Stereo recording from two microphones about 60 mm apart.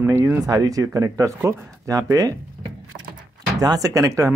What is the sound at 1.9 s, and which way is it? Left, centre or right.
Speech, right.